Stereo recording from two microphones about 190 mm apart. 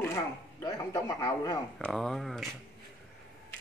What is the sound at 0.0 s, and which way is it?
Speech, 15° left (ahead or behind).